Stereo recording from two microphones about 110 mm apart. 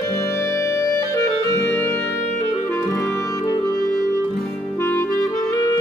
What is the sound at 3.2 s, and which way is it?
Clarinet, 30° left (ahead or behind).